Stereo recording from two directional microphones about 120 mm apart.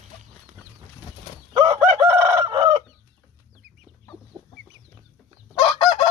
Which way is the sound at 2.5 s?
40° right (ahead or behind).